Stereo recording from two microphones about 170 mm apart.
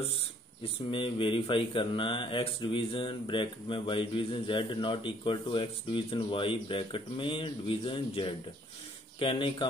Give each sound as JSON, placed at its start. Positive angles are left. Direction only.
{"t": 0.8, "sound": "speech", "side_deg": 30}